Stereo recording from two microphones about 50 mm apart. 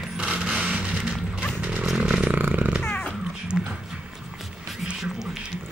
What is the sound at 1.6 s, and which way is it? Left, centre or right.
Chainsaw, right.